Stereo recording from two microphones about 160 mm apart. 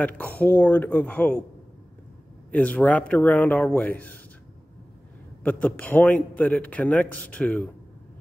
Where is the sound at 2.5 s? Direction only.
10° left (ahead or behind).